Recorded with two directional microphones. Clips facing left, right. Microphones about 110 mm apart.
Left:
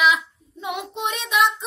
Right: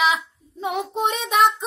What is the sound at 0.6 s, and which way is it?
Child singing, 40° right (ahead or behind).